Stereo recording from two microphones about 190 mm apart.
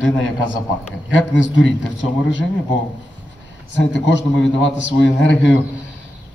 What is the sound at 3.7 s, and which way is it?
Speech, 70° left (ahead or behind).